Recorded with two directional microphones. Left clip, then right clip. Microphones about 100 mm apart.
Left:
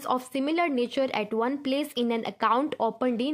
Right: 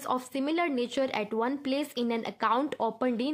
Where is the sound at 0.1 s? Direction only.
25° left (ahead or behind).